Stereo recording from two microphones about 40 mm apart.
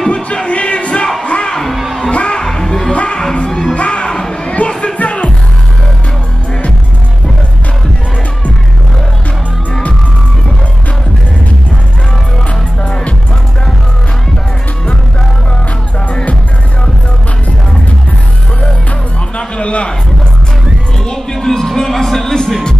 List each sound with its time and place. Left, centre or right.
0.1 s music: left
1.7 s crowd: centre
2.0 s music: left
2.4 s music: centre
2.9 s music: left
4.1 s a sound: centre
4.5 s a sound: left
4.9 s music: left
12.8 s music: left
19.3 s a sound: left
21.0 s music: centre